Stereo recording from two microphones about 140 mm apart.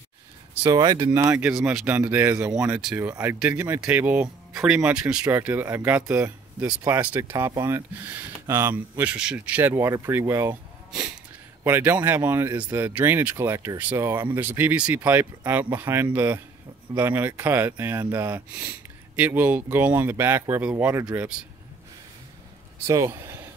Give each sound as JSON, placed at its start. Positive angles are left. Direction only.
{"t": 0.7, "sound": "speech", "side_deg": -30}
{"t": 1.3, "sound": "speech", "side_deg": -5}
{"t": 1.9, "sound": "speech", "side_deg": -15}
{"t": 11.6, "sound": "speech", "side_deg": -15}
{"t": 22.8, "sound": "speech", "side_deg": -25}